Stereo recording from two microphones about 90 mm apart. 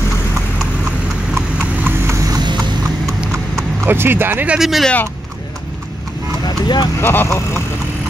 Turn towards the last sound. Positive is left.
turn(degrees=30)  # may be behind; listen again after turning